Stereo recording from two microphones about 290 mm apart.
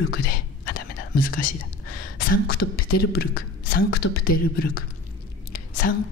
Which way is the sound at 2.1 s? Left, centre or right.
Left.